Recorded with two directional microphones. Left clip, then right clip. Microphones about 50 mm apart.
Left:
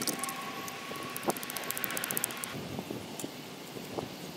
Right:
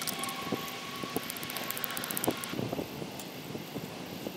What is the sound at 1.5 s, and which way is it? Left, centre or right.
Vehicle, right.